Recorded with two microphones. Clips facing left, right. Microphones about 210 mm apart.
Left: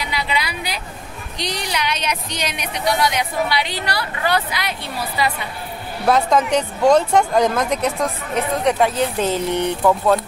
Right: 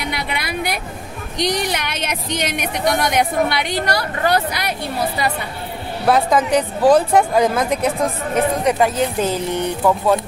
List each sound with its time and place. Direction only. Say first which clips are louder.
0.0 s a sound: left 1 dB; 55° right (ahead or behind)
1.4 s speech: right 4 dB; 50° right (ahead or behind)
6.0 s speech: right 1 dB; 5° right (ahead or behind)